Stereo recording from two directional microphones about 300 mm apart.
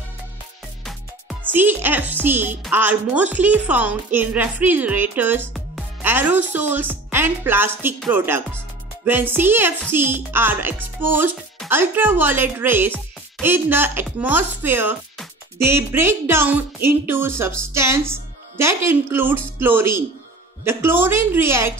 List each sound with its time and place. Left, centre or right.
1.5 s speech: centre